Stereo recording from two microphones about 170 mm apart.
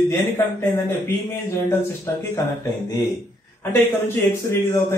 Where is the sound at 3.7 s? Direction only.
15° left (ahead or behind).